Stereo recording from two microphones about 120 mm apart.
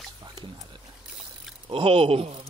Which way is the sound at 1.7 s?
50° right (ahead or behind).